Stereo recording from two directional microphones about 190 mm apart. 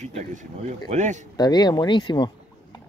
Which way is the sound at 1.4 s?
20° left (ahead or behind).